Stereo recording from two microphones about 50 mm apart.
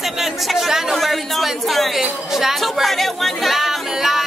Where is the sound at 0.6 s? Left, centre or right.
Centre.